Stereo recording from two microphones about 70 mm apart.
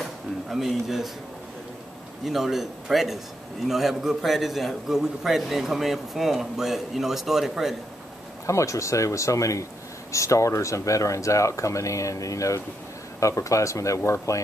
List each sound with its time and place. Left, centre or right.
0.0 s a sound: centre
2.2 s a man's voice: centre
8.5 s speech: left